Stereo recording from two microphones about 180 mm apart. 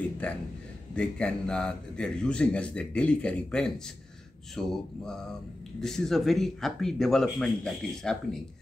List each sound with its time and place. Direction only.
0.9 s a man's voice: 5° left (ahead or behind)